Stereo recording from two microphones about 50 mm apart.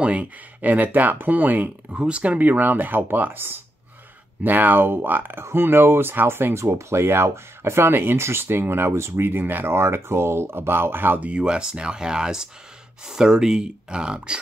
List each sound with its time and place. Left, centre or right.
0.0 s speech: right
2.0 s speech: right
5.4 s speech: right
11.1 s speech: right